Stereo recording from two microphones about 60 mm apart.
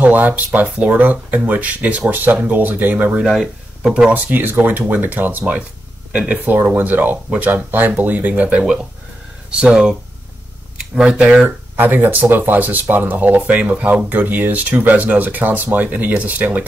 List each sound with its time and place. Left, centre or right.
0.0 s speech: right
3.8 s speech: centre
4.1 s speech: right; by 11.4 s centre
11.4 s speech: right